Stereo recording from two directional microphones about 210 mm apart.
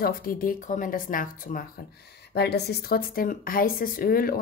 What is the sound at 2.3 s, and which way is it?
Speech, 50° left (ahead or behind).